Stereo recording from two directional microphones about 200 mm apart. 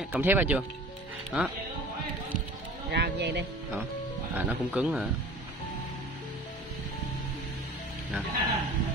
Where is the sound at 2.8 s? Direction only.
60° right (ahead or behind).